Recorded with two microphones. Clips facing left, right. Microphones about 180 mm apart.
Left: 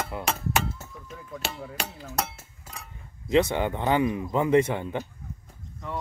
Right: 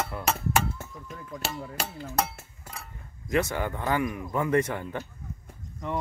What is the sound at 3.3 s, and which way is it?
Speech, 20° left (ahead or behind).